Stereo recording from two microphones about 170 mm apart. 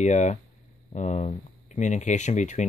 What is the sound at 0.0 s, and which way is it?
Speech, 45° left (ahead or behind).